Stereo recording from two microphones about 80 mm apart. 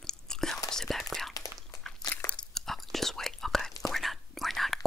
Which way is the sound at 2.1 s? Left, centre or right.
Centre.